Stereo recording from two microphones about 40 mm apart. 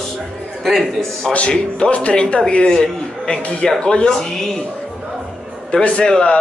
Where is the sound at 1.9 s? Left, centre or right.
Left.